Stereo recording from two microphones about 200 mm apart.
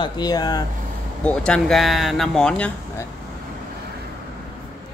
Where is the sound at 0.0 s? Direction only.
20° left (ahead or behind).